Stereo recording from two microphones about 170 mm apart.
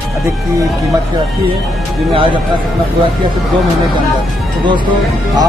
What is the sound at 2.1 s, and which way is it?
Speech, 30° right (ahead or behind).